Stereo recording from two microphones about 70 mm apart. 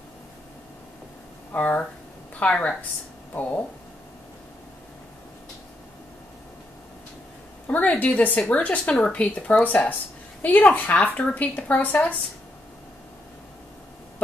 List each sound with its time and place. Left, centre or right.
1.5 s a woman's voice: left
7.6 s speech: left